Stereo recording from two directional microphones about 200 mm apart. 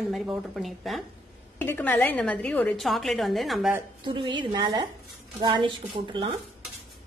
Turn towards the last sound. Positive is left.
turn(degrees=-25)  # may be behind; listen again after turning